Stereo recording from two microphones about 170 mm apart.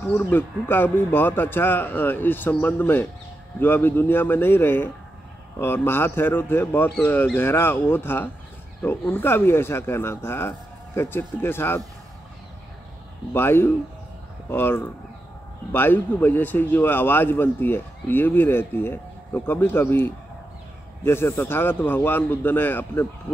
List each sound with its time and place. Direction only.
0.0 s a man's voice: 15° left (ahead or behind)
13.3 s a man's voice: 15° left (ahead or behind)